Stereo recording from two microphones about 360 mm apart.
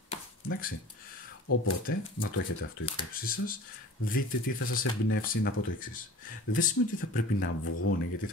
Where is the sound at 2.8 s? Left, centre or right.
Centre.